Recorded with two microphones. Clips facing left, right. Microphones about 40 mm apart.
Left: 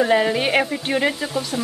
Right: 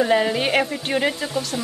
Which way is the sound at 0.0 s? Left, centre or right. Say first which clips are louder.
Left 1 dB; centre.